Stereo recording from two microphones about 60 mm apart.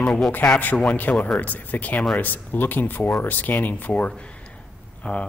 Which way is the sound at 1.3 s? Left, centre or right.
Left.